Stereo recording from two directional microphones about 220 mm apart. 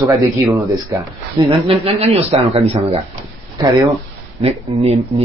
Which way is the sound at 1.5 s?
25° right (ahead or behind).